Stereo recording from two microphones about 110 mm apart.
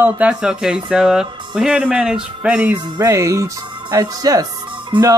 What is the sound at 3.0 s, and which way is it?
Speech, 30° right (ahead or behind).